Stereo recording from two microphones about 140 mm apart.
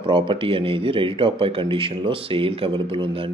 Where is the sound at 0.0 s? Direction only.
35° right (ahead or behind).